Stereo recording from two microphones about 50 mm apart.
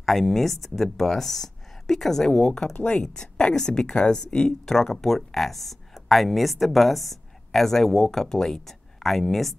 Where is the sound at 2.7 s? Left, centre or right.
Left.